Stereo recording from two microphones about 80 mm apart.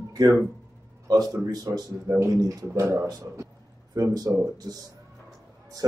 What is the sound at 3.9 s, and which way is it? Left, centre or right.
Speech, right.